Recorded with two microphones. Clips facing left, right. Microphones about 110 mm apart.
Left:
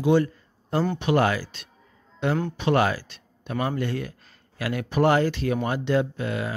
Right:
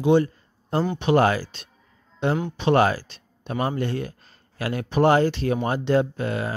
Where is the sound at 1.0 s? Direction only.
30° right (ahead or behind).